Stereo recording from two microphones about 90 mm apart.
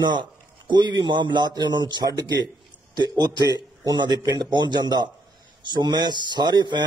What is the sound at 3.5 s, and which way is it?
Speech, 50° right (ahead or behind).